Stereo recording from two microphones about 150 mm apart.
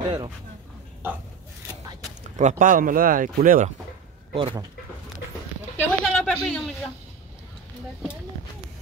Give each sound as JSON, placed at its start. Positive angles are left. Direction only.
{"t": 0.0, "sound": "speech", "side_deg": -30}
{"t": 2.3, "sound": "speech", "side_deg": -55}
{"t": 4.3, "sound": "speech", "side_deg": -40}
{"t": 5.8, "sound": "a sound", "side_deg": 5}